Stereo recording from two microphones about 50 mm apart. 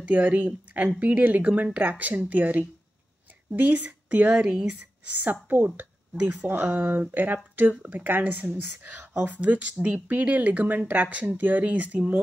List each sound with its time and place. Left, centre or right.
0.0 s a woman's voice: right
4.6 s speech: right
9.3 s speech: right